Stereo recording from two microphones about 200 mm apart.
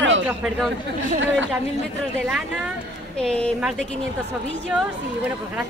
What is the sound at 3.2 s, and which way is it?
Speech, 5° left (ahead or behind).